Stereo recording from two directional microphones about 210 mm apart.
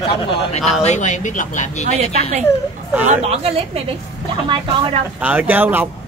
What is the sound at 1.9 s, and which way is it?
A woman's voice, 35° right (ahead or behind).